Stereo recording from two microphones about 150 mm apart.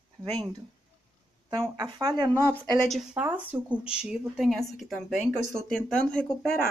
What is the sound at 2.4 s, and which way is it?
Speech, 10° left (ahead or behind).